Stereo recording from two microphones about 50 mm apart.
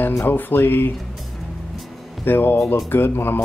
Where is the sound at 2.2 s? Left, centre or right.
Left.